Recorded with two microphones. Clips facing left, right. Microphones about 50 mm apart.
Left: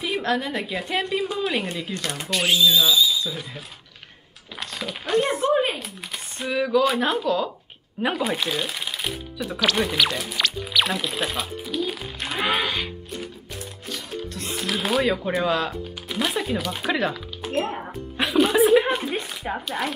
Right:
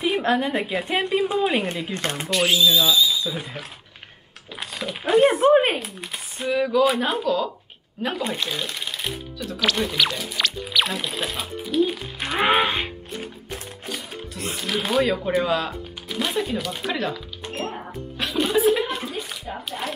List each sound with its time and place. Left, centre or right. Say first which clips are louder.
0.0 s a woman's voice: right 3 dB; right
1.7 s speech: right 2 dB; right
2.2 s speech: right 1 dB; centre
4.6 s speech: right 1 dB; centre
5.4 s speech: right 5 dB; right
5.8 s speech: right 2 dB; centre
8.0 s speech: left 2 dB; centre
12.4 s music: right 4 dB; right
14.1 s speech: left 1 dB; centre
17.7 s music: left 3 dB; centre
19.4 s speech: left 4 dB; left